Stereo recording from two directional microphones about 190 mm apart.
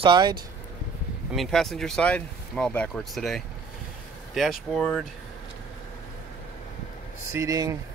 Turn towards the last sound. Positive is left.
turn(degrees=-15)  # may be behind; listen again after turning